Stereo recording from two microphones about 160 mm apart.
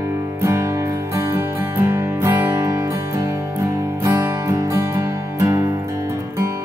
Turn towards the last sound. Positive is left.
turn(degrees=-20)  # may be behind; listen again after turning